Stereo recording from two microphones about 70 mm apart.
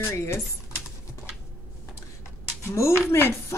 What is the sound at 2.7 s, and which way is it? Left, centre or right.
Speech, left.